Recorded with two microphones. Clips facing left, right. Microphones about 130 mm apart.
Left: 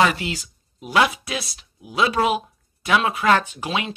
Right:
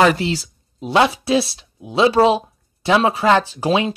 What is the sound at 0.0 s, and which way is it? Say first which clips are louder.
Speech: right 5 dB; 35° right (ahead or behind).